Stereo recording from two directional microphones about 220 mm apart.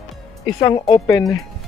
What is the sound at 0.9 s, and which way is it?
Speech, 15° left (ahead or behind).